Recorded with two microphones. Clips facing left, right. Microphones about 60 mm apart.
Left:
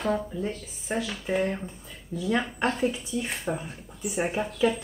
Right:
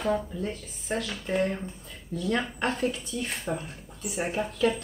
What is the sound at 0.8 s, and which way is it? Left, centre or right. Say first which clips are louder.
Speech: left 1 dB; centre.